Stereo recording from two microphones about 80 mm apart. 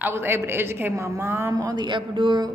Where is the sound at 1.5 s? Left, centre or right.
Right.